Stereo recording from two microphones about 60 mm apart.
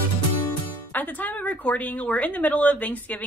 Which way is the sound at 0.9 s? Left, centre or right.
Left.